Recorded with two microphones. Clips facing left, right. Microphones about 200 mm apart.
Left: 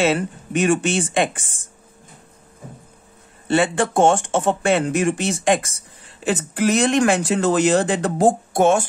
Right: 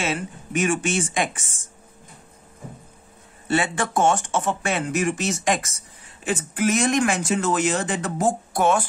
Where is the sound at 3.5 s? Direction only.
30° left (ahead or behind).